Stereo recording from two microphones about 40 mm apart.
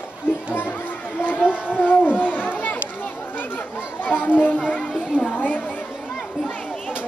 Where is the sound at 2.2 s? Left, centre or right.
Left.